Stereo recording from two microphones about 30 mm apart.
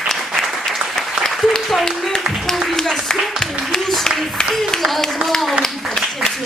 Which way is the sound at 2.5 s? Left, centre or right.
Centre.